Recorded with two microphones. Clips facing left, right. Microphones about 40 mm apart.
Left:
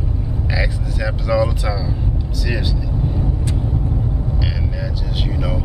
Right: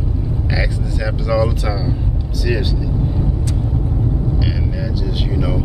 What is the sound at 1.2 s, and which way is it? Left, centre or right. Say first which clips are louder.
Speech: even; centre.